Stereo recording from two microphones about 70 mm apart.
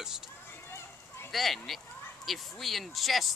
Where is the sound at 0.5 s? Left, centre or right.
Left.